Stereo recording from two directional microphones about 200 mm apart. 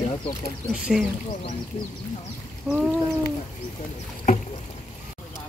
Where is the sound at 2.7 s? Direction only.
Centre (ahead or behind).